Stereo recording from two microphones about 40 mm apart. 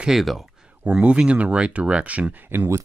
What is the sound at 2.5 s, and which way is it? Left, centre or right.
Speech, right.